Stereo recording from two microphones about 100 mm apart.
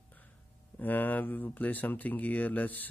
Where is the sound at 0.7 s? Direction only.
15° left (ahead or behind).